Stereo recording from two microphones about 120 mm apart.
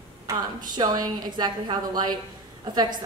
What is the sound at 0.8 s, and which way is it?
A woman's voice, 35° right (ahead or behind).